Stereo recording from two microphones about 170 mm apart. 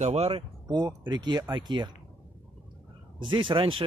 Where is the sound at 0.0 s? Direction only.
40° right (ahead or behind).